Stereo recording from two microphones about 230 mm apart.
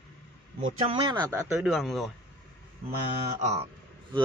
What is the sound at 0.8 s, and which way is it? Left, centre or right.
Speech, right.